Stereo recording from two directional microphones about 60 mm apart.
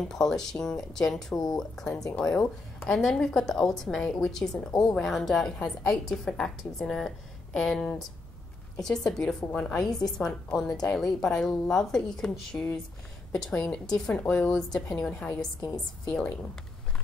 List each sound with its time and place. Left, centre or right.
0.1 s a woman's voice: centre
9.5 s a woman's voice: left
9.8 s a woman's voice: centre
13.5 s a woman's voice: left
16.1 s a woman's voice: centre